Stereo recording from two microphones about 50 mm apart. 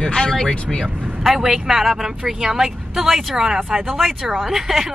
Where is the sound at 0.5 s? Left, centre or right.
Left.